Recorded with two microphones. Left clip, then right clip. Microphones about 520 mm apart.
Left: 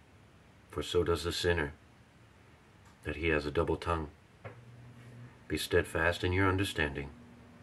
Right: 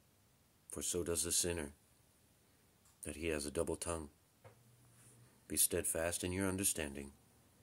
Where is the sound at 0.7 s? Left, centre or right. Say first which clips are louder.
Left 10 dB; right.